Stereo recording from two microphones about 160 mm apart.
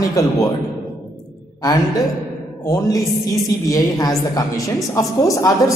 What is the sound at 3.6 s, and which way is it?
A man's voice, 20° left (ahead or behind).